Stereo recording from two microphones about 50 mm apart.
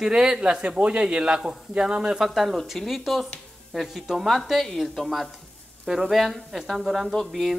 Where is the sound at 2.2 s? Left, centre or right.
Centre.